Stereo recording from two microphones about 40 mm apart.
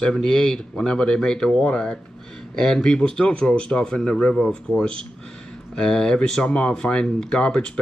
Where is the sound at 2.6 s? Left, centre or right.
Centre.